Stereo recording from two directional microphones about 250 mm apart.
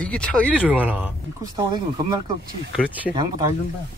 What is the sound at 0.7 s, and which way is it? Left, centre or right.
Speech, centre.